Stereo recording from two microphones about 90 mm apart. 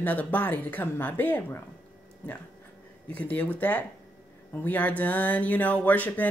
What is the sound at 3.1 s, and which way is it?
Speech, 15° left (ahead or behind).